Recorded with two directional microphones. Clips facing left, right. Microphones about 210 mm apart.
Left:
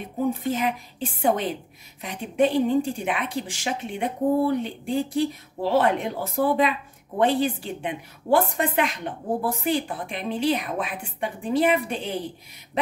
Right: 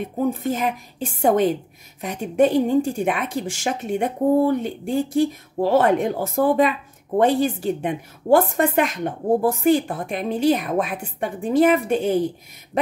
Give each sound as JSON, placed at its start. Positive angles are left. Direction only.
{"t": 0.3, "sound": "a woman's voice", "side_deg": -45}